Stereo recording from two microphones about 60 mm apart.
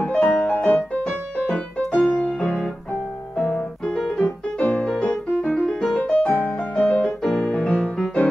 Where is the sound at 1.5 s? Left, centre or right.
Left.